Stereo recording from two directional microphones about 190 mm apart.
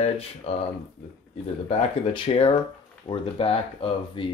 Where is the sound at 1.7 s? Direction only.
30° left (ahead or behind).